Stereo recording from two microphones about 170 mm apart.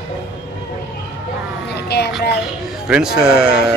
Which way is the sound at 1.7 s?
80° left.